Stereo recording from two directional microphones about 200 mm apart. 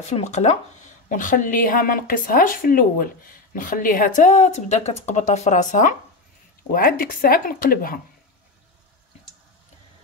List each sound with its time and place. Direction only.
0.0 s speech: 35° left (ahead or behind)